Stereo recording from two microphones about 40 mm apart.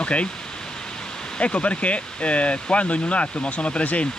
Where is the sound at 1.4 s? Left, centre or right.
Left.